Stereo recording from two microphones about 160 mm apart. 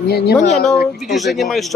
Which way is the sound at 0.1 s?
90° left.